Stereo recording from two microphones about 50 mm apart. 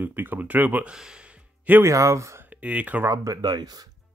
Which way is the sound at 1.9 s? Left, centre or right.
Right.